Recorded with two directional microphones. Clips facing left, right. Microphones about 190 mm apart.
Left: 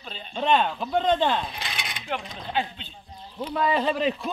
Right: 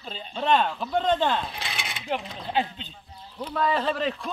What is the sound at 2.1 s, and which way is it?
Speech, 15° right (ahead or behind).